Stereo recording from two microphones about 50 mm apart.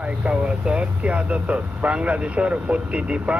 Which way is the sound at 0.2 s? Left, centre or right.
Right.